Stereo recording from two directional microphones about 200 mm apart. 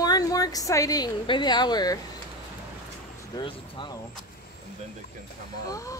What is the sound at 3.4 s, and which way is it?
Speech, 25° left (ahead or behind).